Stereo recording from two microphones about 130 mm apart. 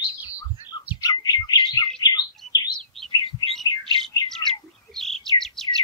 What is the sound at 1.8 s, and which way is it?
Bird, 30° left (ahead or behind).